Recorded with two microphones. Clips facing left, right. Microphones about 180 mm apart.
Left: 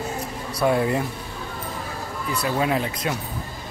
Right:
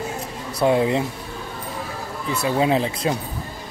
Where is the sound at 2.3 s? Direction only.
25° right (ahead or behind).